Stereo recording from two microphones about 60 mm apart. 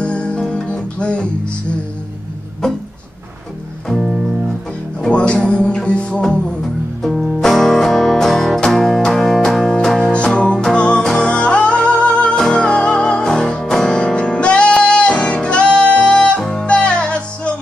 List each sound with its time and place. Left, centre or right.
0.0 s music: centre
3.9 s music: centre
5.1 s music: centre
6.2 s music: centre
10.1 s music: centre